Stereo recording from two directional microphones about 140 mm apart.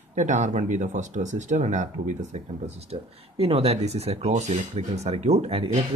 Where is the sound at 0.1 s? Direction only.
60° right (ahead or behind).